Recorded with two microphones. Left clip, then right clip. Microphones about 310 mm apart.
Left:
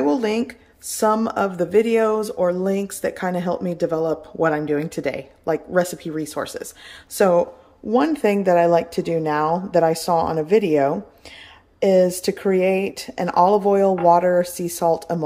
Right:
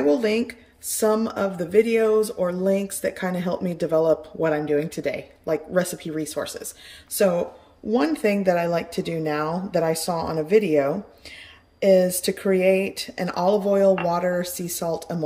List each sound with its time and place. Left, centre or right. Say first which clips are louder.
0.0 s speech: even; centre